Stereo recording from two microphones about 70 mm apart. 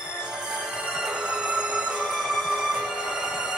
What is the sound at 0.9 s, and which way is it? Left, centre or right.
Music, centre.